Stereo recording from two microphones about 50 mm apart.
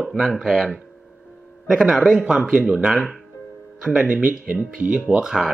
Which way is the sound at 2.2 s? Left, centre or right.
Right.